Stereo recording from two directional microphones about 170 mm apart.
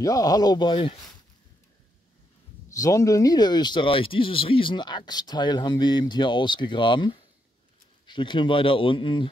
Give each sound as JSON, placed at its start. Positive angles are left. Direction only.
{"t": 0.0, "sound": "speech", "side_deg": 20}
{"t": 2.7, "sound": "speech", "side_deg": 20}